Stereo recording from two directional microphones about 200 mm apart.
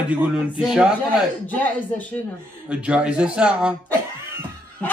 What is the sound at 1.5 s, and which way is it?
Speech, 5° left (ahead or behind).